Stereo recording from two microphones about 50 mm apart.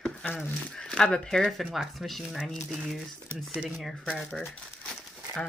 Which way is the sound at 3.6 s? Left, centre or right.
Centre.